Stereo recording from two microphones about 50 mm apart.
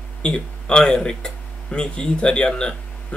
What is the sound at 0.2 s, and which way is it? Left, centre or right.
Speech, centre.